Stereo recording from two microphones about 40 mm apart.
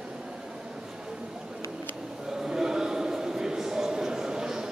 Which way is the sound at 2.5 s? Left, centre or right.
Centre.